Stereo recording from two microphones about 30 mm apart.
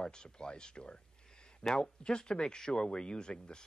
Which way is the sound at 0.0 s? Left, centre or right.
Left.